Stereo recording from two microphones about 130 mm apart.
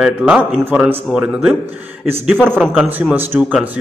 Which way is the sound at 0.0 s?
5° right (ahead or behind).